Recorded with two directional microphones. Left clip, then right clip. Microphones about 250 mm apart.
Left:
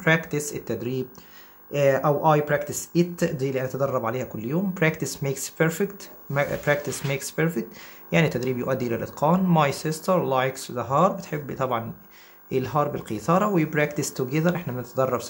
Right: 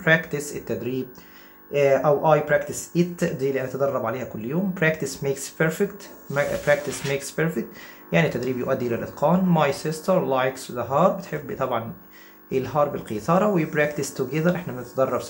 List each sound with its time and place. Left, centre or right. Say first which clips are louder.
0.0 s speech: right 2 dB; left